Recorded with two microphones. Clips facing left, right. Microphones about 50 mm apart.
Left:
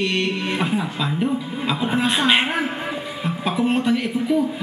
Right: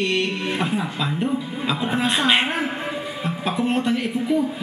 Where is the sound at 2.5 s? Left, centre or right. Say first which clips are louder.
Left 1 dB; centre.